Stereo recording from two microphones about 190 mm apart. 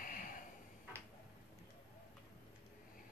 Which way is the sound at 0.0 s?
45° left (ahead or behind).